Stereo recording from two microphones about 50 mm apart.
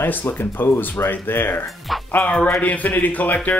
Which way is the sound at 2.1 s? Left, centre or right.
Left.